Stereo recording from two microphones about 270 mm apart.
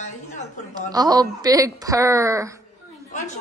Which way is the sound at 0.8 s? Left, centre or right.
Centre.